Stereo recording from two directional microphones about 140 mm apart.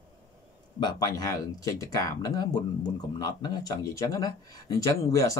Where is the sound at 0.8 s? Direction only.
25° left (ahead or behind).